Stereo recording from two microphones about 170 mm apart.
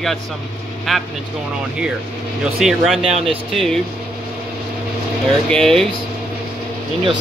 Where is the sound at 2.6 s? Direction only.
Centre (ahead or behind).